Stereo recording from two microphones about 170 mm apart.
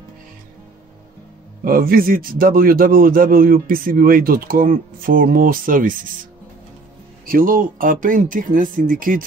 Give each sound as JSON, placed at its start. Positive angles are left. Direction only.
{"t": 1.6, "sound": "a man's voice", "side_deg": -60}
{"t": 7.2, "sound": "speech", "side_deg": -55}